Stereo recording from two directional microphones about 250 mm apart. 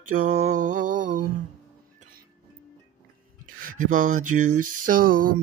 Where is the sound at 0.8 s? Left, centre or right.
Right.